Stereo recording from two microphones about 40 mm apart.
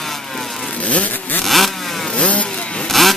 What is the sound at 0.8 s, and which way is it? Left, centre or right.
Vehicle, left.